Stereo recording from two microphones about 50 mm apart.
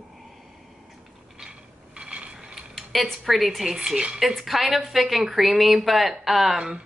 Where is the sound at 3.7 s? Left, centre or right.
Centre.